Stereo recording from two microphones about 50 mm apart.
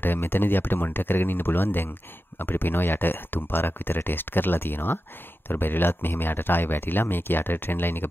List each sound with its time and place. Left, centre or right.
0.0 s speech: left